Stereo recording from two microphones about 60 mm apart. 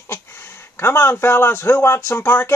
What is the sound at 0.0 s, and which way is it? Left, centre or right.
Speech, left.